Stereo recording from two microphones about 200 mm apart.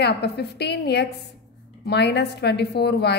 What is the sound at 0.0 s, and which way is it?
A woman's voice, 55° left (ahead or behind).